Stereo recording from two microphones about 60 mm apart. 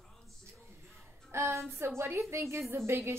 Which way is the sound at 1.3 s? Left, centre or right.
Right.